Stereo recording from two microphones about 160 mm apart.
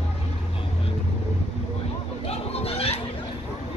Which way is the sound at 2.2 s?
40° left (ahead or behind).